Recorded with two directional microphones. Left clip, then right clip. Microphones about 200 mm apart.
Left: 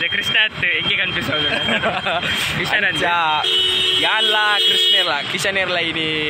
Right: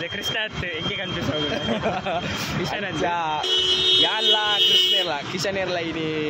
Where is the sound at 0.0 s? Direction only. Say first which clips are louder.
Left 9 dB; 20° right (ahead or behind).